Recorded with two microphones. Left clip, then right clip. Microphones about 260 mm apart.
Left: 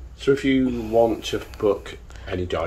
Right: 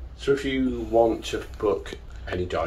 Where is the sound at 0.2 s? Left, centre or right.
Left.